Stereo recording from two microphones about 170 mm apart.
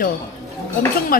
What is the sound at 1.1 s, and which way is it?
Speech, 60° left (ahead or behind).